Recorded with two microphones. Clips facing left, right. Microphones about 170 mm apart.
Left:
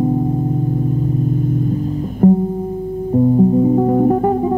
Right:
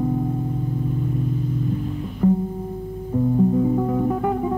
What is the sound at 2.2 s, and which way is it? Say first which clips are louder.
Music: left 7 dB; 40° left (ahead or behind).